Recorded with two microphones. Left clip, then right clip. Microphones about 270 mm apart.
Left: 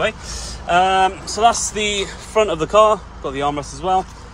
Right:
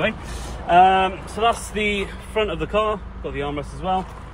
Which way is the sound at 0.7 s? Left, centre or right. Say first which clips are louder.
Even; centre.